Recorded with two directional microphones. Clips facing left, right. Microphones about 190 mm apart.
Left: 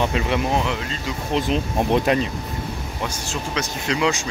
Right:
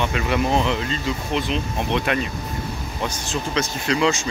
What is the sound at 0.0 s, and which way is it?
Speech, 30° left (ahead or behind).